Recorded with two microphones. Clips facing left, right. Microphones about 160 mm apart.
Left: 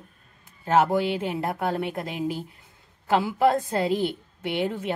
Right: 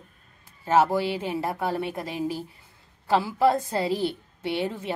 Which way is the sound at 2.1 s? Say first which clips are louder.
Even; 15° left (ahead or behind).